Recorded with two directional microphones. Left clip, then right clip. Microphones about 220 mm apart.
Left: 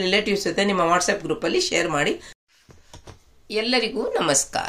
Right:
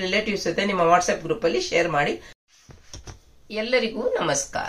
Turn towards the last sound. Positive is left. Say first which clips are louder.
# left 2 dB
turn(degrees=45)  # may be behind; listen again after turning